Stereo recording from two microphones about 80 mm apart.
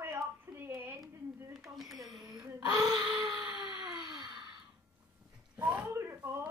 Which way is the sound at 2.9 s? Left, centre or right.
Centre.